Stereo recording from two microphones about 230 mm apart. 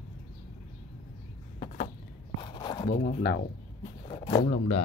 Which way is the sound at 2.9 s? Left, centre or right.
Left.